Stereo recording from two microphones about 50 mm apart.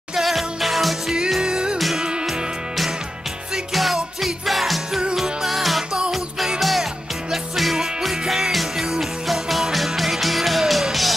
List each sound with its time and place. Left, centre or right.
0.1 s music: centre
1.4 s music: centre
3.5 s music: centre